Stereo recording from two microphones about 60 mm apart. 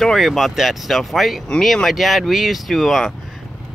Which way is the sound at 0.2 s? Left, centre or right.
Centre.